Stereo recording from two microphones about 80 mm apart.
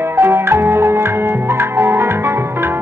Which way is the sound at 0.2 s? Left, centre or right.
Right.